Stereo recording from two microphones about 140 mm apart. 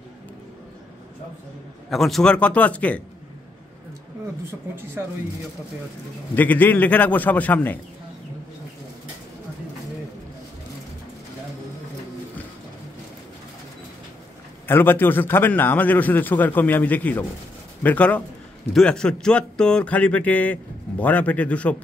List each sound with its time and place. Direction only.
1.9 s a man's voice: centre (ahead or behind)
4.5 s speech: 15° right (ahead or behind)
6.3 s a man's voice: 15° left (ahead or behind)
14.7 s a man's voice: 15° left (ahead or behind)